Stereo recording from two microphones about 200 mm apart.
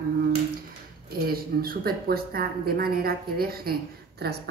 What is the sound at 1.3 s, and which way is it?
A woman's voice, 50° right (ahead or behind).